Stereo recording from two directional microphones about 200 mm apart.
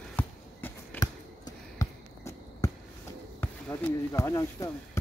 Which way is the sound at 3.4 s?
10° left (ahead or behind).